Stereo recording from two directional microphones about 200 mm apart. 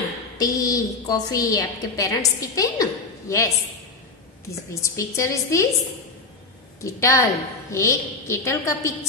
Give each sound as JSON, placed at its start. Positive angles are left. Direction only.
{"t": 0.4, "sound": "a woman's voice", "side_deg": 15}
{"t": 4.8, "sound": "a woman's voice", "side_deg": 15}
{"t": 6.8, "sound": "a woman's voice", "side_deg": 15}